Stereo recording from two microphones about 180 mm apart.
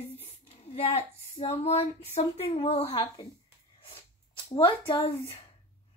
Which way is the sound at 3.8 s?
30° left (ahead or behind).